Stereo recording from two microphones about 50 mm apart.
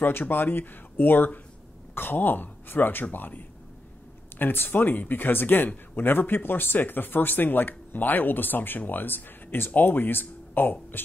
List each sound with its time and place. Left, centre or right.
0.0 s speech: left